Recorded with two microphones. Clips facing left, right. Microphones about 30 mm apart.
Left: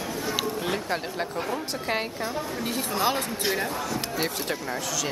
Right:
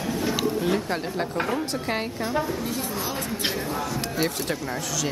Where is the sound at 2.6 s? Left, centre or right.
Left.